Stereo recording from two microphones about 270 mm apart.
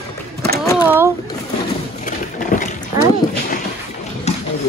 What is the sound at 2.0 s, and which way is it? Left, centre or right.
Boat, left.